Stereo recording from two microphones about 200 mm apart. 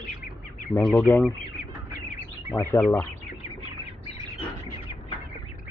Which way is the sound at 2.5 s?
10° left (ahead or behind).